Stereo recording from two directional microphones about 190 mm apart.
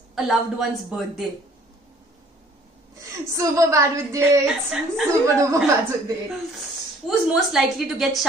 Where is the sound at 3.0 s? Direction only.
15° right (ahead or behind).